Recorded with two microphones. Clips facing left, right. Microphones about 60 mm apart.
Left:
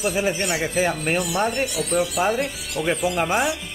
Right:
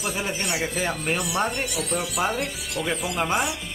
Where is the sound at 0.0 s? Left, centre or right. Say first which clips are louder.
Left 6 dB; centre.